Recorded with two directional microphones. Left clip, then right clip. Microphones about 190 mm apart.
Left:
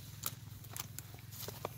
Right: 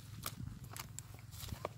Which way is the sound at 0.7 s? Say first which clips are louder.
Left 2 dB; 20° right (ahead or behind).